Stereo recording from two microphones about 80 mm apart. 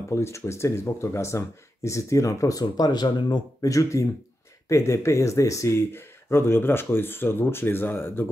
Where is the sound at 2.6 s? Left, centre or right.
Left.